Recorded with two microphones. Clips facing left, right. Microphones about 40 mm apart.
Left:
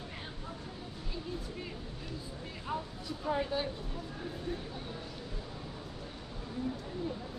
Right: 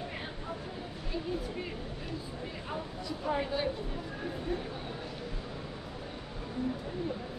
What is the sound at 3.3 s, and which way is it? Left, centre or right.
A woman's voice, centre.